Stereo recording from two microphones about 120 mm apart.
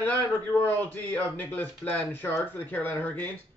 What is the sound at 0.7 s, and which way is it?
A man's voice, 15° left (ahead or behind).